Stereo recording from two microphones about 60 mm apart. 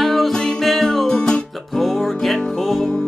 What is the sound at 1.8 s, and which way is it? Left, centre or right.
Music, centre.